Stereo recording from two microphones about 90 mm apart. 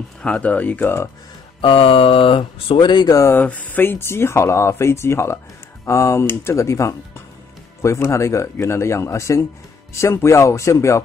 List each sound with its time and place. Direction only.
0.2 s speech: 15° left (ahead or behind)
1.6 s speech: 85° left; by 3.2 s 55° left (ahead or behind)
3.2 s speech: 30° left (ahead or behind)
3.4 s speech: 15° left (ahead or behind); by 11.0 s 35° left (ahead or behind)